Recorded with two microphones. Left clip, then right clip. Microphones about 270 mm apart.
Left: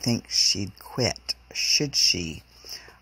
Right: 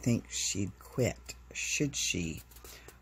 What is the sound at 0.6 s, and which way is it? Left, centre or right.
Speech, centre.